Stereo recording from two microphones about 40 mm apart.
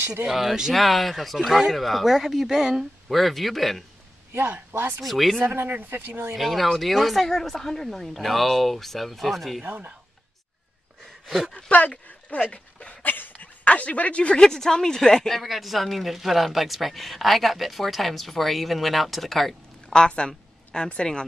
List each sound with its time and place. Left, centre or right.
0.3 s speech: centre
3.1 s speech: centre
4.3 s a man's voice: right
5.0 s speech: centre
5.7 s a man's voice: right
6.3 s speech: centre
9.7 s speech: right
11.2 s speech: centre
11.5 s speech: left
12.5 s dog: left
13.0 s a sound: left
14.4 s speech: centre
15.2 s speech: centre
20.1 s a woman's voice: left